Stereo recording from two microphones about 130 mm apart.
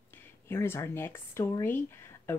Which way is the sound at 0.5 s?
20° left (ahead or behind).